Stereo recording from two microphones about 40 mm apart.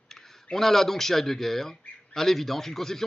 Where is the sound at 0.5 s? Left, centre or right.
Centre.